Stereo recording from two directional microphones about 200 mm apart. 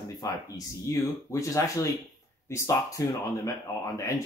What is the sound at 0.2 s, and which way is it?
Speech, 20° left (ahead or behind).